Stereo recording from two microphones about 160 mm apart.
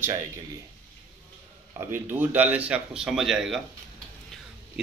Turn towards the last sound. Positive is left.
turn(degrees=-5)  # may be behind; listen again after turning